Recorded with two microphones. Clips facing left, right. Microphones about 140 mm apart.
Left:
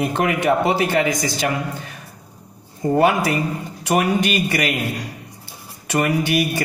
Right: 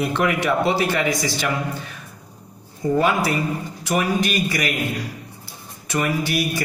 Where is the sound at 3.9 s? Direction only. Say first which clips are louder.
Left 3 dB; 60° left (ahead or behind).